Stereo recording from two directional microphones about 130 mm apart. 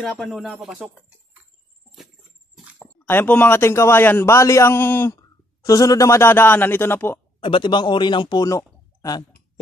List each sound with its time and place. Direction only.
0.0 s speech: centre (ahead or behind)
2.8 s a man's voice: 15° left (ahead or behind)
7.3 s a man's voice: 40° left (ahead or behind)